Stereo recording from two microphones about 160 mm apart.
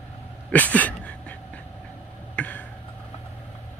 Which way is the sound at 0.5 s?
10° left (ahead or behind).